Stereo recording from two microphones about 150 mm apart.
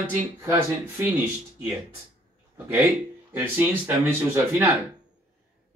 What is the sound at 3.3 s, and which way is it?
Speech, 10° right (ahead or behind).